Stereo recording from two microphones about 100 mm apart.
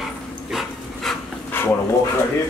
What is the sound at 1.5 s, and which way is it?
Bow-wow, 20° left (ahead or behind).